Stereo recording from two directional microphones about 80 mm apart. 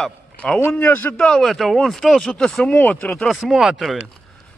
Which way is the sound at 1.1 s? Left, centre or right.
Centre.